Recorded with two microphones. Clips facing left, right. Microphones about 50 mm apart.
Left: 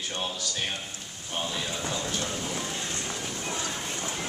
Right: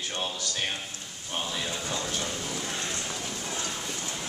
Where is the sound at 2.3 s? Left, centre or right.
Centre.